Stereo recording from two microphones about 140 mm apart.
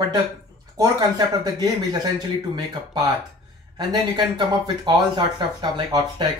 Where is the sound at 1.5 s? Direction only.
30° right (ahead or behind).